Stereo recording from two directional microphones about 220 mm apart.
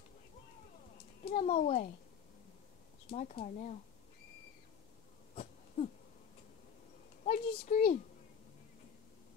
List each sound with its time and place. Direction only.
1.2 s a child's voice: 30° left (ahead or behind)
3.1 s speech: 35° left (ahead or behind)
5.3 s a sound: 30° left (ahead or behind)
7.2 s speech: 35° left (ahead or behind)